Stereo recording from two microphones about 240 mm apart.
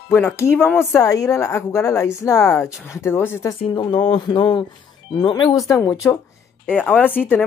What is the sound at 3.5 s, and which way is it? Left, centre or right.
Speech, left.